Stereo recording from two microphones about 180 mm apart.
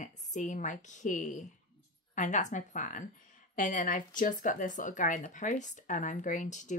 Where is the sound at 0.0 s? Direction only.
40° left (ahead or behind).